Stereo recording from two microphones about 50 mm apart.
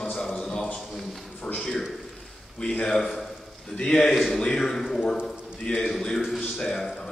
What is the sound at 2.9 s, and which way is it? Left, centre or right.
A man's voice, centre.